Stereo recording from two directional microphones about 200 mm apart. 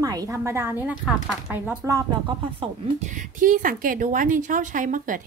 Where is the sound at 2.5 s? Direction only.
40° right (ahead or behind).